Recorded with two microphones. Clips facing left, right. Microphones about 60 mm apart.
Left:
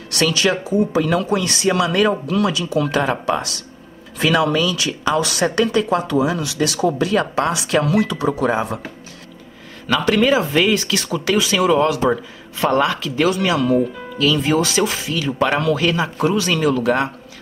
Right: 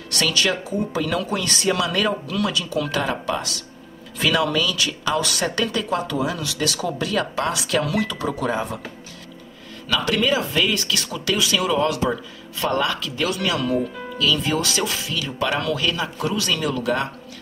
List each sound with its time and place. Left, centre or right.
0.1 s a man's voice: left
1.0 s speech: left
1.4 s speech: centre
1.7 s a man's voice: left